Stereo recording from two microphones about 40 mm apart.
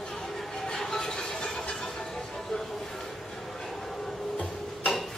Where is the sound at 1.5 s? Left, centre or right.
Centre.